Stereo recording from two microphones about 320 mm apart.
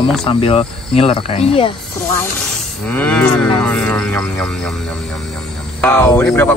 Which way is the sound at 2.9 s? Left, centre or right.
Centre.